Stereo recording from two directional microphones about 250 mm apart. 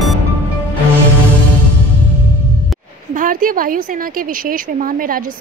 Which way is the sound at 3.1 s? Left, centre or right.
Right.